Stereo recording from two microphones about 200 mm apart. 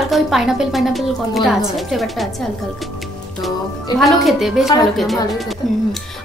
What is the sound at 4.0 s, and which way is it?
A woman's voice, centre (ahead or behind).